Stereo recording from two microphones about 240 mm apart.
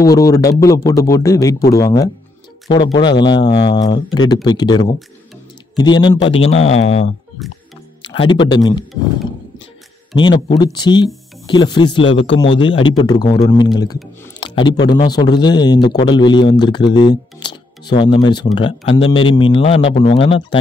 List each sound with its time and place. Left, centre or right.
0.0 s a man's voice: centre
7.4 s music: centre
8.0 s speech: left
10.1 s a man's voice: centre